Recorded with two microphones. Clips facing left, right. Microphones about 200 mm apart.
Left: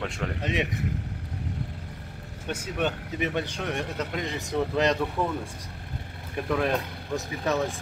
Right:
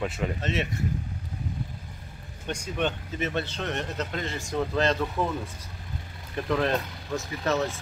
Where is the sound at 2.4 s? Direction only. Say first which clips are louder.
Even; 5° left (ahead or behind).